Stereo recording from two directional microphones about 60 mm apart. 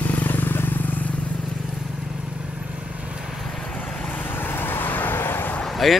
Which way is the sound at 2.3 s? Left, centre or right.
Centre.